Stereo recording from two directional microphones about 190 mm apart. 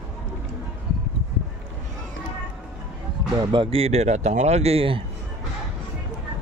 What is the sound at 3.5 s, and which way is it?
Speech, 30° right (ahead or behind).